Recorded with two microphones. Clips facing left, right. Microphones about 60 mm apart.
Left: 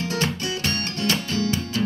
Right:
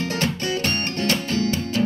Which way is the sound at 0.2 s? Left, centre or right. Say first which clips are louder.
Right 2 dB; right.